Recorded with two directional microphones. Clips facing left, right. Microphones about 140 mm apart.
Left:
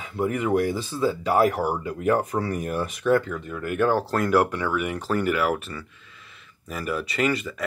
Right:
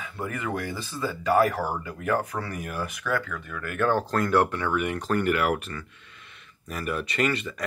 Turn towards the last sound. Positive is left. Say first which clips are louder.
# left 2 dB
turn(degrees=5)  # may be behind; listen again after turning